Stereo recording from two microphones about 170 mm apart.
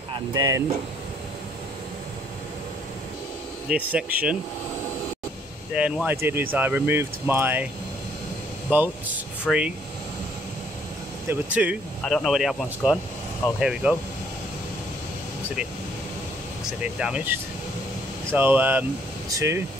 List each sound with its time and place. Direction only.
0.3 s speech: 20° right (ahead or behind)
3.6 s speech: 5° right (ahead or behind)
5.7 s speech: 5° right (ahead or behind)
8.7 s speech: 10° right (ahead or behind)
9.5 s speech: 5° left (ahead or behind)
11.5 s speech: 10° right (ahead or behind)
16.8 s speech: 5° right (ahead or behind)